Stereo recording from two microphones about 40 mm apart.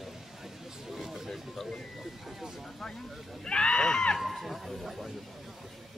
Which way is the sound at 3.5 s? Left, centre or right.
Left.